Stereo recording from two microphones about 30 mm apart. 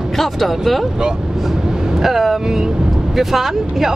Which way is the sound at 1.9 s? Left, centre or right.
Centre.